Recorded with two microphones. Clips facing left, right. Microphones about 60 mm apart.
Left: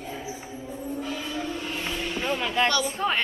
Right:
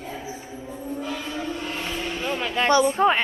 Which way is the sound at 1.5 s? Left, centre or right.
Right.